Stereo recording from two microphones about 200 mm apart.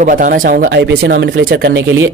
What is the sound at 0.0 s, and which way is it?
Speech, 40° right (ahead or behind).